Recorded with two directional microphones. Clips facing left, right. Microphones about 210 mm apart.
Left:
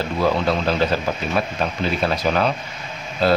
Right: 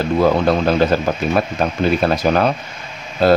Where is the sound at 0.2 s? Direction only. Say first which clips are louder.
Right 4 dB; 50° right (ahead or behind).